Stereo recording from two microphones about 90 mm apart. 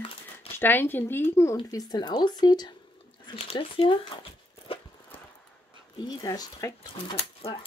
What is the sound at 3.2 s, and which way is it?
Speech, 75° left (ahead or behind).